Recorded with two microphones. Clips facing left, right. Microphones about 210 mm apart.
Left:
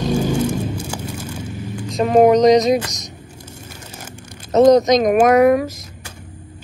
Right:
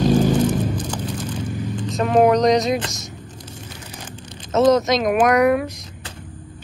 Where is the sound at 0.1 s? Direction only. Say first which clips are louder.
Right 2 dB; 10° left (ahead or behind).